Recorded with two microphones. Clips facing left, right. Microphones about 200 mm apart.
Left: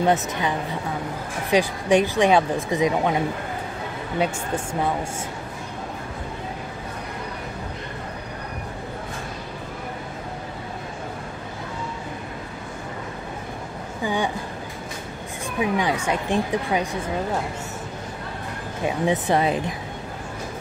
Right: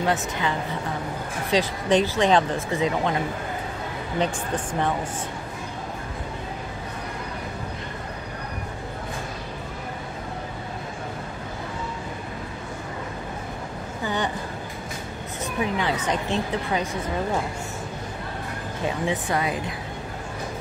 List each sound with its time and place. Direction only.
0.0 s speech: 20° left (ahead or behind)
14.0 s a sound: 10° left (ahead or behind)
15.6 s speech: 15° left (ahead or behind)
19.0 s speech: 25° left (ahead or behind)